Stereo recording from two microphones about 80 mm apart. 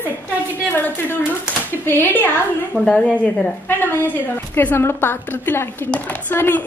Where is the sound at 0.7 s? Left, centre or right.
Left.